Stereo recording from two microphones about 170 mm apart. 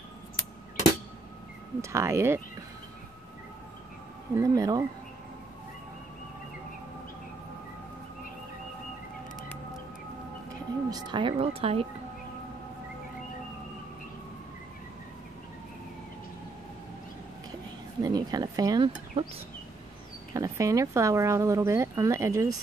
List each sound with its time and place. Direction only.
1.8 s speech: 15° right (ahead or behind)
4.4 s cutlery: 20° right (ahead or behind)
10.5 s speech: 20° right (ahead or behind)
18.0 s cutlery: 25° right (ahead or behind)
20.3 s speech: 20° right (ahead or behind)